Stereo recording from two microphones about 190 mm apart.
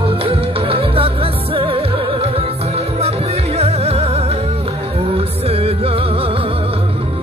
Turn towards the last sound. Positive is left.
turn(degrees=-30)  # may be behind; listen again after turning